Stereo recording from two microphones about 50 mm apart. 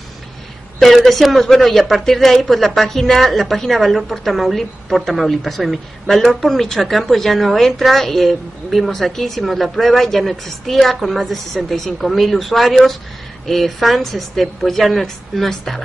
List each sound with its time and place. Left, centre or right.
0.7 s a woman's voice: centre